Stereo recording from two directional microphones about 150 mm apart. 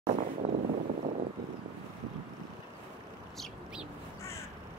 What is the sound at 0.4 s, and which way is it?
Vehicle, 40° right (ahead or behind).